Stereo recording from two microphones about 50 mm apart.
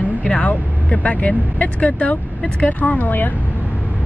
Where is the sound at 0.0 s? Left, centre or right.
Left.